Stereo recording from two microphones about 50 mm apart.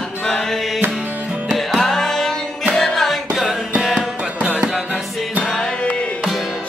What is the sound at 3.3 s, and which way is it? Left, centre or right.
Music, centre.